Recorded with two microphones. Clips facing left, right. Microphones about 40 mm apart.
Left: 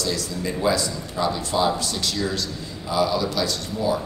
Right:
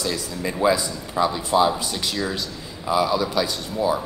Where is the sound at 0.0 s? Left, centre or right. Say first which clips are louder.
Even; right.